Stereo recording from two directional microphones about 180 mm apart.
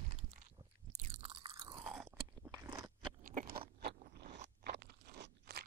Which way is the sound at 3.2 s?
50° right (ahead or behind).